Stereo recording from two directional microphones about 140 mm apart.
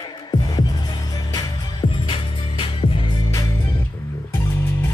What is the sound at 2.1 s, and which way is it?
Music, 40° left (ahead or behind).